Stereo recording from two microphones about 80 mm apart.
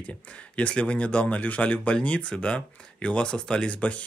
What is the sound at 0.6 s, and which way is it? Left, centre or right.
Speech, centre.